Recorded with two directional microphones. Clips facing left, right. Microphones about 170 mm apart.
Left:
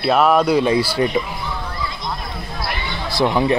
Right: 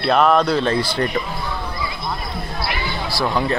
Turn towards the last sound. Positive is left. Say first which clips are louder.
# left 4 dB
turn(degrees=20)  # may be behind; listen again after turning